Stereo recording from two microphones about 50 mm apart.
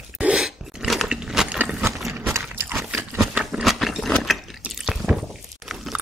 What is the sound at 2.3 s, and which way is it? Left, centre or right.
Pig, right.